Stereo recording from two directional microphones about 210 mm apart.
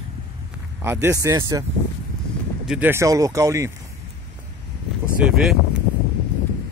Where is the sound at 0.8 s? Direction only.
10° right (ahead or behind).